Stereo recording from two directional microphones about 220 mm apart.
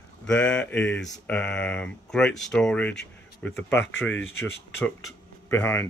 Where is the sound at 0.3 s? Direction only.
5° left (ahead or behind).